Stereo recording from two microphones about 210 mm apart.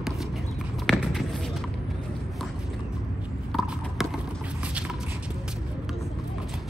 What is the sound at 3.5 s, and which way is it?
Mechanisms, centre (ahead or behind).